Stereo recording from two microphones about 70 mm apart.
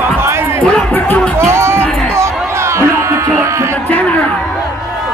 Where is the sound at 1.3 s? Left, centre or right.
Right.